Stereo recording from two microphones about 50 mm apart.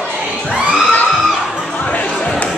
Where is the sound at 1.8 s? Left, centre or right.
Left.